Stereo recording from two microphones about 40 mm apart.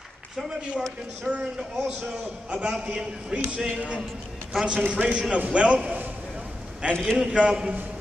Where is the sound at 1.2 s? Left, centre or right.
Right.